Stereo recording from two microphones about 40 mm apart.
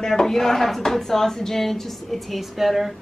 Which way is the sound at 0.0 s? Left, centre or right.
Centre.